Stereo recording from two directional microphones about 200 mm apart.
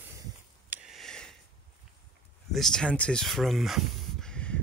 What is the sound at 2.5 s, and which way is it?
Speech, 5° left (ahead or behind).